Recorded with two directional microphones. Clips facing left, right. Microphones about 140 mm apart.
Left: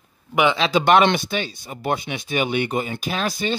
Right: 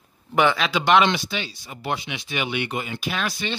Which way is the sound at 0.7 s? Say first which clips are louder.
Left 5 dB; 50° left (ahead or behind).